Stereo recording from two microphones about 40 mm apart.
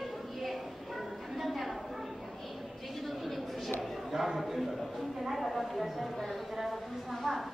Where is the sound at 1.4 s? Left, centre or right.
Centre.